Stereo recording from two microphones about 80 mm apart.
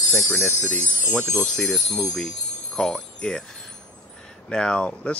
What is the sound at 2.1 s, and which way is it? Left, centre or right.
Jingle bell, centre.